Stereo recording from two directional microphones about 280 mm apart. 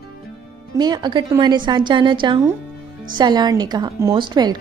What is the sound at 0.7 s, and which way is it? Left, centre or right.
Speech, centre.